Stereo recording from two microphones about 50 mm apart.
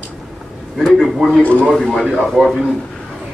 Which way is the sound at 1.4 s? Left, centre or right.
Left.